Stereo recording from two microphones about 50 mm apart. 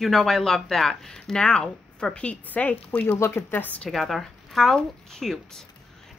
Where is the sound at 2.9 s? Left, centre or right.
Left.